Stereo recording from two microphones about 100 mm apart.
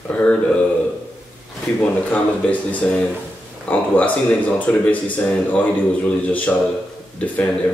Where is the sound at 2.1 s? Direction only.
15° left (ahead or behind).